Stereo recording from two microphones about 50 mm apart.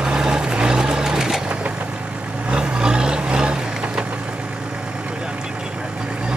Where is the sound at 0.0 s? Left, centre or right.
Centre.